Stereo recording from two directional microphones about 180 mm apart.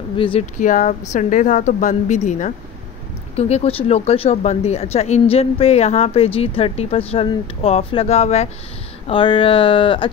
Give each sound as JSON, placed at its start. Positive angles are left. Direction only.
{"t": 0.2, "sound": "speech", "side_deg": 30}
{"t": 0.6, "sound": "a woman's voice", "side_deg": 45}